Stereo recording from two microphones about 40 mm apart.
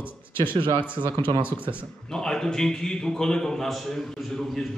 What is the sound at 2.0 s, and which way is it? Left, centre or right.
A man's voice, centre.